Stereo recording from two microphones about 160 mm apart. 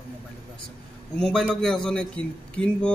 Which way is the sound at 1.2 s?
5° left (ahead or behind).